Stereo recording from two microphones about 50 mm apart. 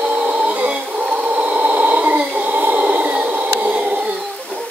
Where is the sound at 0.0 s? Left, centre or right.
Right.